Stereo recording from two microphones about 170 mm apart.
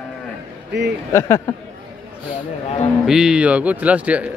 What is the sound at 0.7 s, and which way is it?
Speech, 90° right.